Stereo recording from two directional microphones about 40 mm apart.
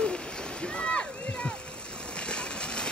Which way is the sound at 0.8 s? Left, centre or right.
Left.